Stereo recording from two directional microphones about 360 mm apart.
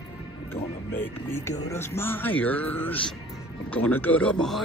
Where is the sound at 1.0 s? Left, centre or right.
Centre.